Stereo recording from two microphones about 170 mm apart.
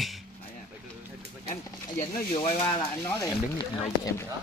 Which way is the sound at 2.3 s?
35° left (ahead or behind).